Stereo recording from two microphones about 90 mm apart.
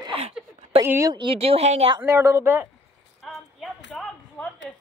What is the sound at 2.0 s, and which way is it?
Speech, 30° right (ahead or behind).